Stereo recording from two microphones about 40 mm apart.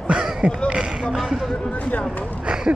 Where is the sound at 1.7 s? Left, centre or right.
Left.